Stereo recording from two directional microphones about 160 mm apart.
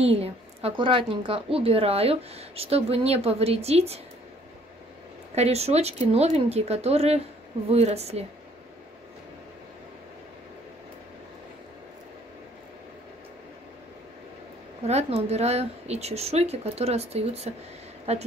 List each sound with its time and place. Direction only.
0.0 s a woman's voice: 40° right (ahead or behind)
5.3 s a woman's voice: 40° right (ahead or behind)
14.9 s a woman's voice: 45° right (ahead or behind)